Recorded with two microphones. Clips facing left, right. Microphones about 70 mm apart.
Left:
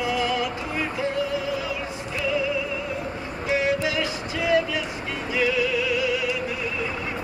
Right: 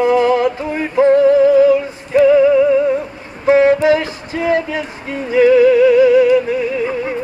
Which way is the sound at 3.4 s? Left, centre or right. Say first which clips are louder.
Right 13 dB; right.